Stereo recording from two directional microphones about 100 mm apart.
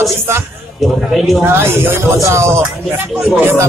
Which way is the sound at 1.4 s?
25° right (ahead or behind).